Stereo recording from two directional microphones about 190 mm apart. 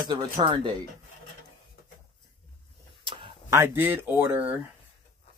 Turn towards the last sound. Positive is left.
turn(degrees=-10)  # may be behind; listen again after turning